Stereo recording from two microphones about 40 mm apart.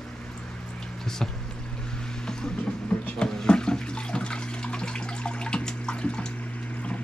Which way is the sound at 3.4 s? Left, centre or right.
Left.